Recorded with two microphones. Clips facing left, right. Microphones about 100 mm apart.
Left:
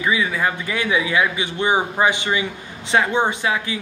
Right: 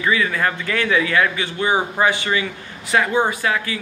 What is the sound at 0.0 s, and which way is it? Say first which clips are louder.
A man's voice: right 1 dB; 15° left (ahead or behind).